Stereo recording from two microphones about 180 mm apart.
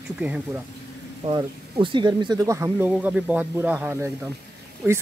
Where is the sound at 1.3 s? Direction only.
30° right (ahead or behind).